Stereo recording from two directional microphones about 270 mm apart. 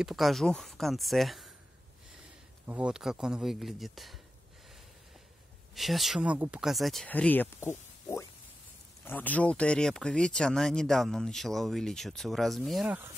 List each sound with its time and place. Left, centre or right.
0.0 s speech: centre
2.6 s speech: centre
5.8 s speech: centre
9.0 s speech: centre